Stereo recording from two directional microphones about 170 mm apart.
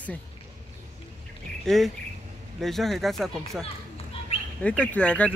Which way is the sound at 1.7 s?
Centre (ahead or behind).